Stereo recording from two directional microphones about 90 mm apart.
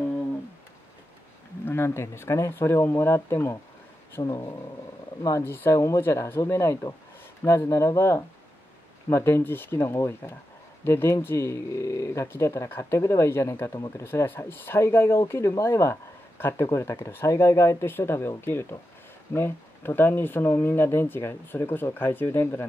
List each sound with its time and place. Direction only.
1.7 s speech: 25° left (ahead or behind)
4.2 s speech: 65° left (ahead or behind)
5.4 s speech: 25° left (ahead or behind)
5.7 s speech: 35° left (ahead or behind)